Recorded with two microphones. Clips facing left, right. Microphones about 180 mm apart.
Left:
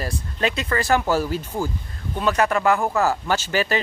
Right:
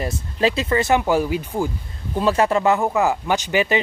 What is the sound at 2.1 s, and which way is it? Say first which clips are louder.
Speech: right 3 dB; 30° right (ahead or behind).